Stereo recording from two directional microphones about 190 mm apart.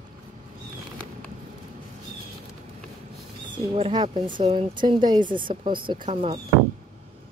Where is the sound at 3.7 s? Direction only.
30° right (ahead or behind).